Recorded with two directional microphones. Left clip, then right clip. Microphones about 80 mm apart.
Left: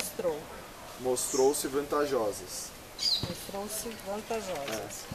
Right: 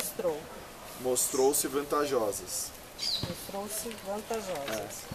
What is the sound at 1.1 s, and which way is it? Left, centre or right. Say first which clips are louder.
Speech: even; right.